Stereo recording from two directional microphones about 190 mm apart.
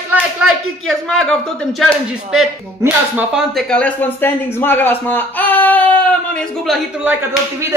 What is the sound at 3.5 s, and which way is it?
A man's voice, 5° left (ahead or behind).